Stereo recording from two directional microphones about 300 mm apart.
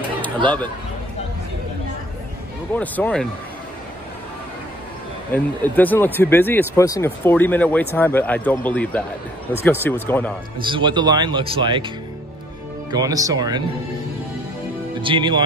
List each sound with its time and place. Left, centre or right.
2.7 s speech: centre
5.3 s speech: centre
10.7 s speech: centre
12.9 s speech: centre
15.0 s speech: centre